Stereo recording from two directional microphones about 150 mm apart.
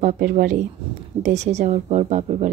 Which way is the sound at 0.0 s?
65° right (ahead or behind).